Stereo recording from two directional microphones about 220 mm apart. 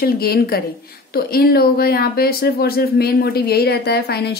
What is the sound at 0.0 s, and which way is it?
Speech, 45° left (ahead or behind).